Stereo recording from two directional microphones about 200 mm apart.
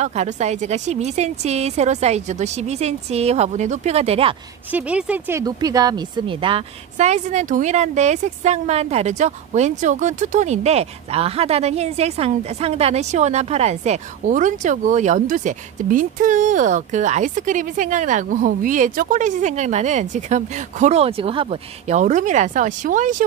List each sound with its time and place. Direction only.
0.0 s a woman's voice: 35° right (ahead or behind)
4.7 s speech: 5° right (ahead or behind)
5.4 s a woman's voice: 20° right (ahead or behind); by 23.2 s 40° right (ahead or behind)